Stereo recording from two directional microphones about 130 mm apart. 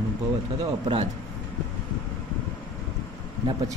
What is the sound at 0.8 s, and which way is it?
Speech, 50° right (ahead or behind).